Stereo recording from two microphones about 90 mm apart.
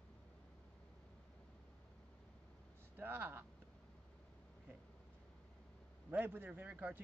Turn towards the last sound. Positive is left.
turn(degrees=-20)  # may be behind; listen again after turning